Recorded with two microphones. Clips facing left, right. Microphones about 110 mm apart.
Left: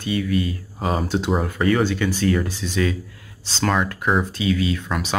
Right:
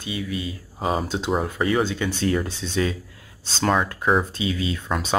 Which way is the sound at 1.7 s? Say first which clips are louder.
Left 5 dB; 15° right (ahead or behind).